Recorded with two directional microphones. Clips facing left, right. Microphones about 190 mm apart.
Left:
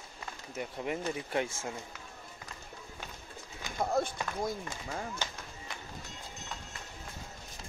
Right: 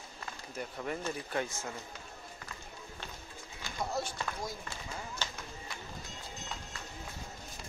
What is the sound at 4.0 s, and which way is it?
Run, 55° left (ahead or behind).